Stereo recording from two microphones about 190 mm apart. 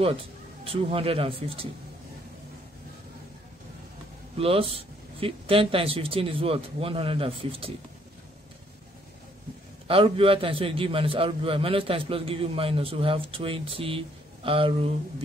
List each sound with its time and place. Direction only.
0.7 s a man's voice: 30° right (ahead or behind)
4.4 s a man's voice: 30° right (ahead or behind)
9.8 s a man's voice: 30° right (ahead or behind)